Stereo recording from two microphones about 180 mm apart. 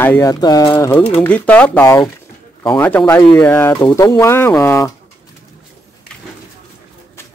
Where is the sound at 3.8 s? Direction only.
25° left (ahead or behind).